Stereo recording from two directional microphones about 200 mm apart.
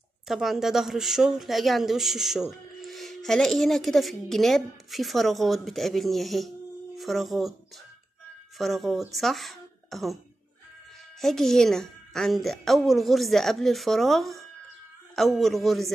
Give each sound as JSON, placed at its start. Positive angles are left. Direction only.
{"t": 0.3, "sound": "speech", "side_deg": 0}
{"t": 8.5, "sound": "speech", "side_deg": 0}
{"t": 11.1, "sound": "speech", "side_deg": 0}